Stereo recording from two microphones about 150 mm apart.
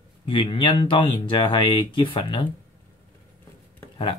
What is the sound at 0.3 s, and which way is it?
Speech, 35° left (ahead or behind).